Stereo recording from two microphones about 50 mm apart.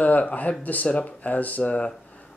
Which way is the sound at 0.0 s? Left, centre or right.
Left.